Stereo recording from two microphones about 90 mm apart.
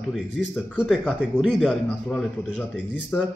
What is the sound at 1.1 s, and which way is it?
Speech, 10° right (ahead or behind).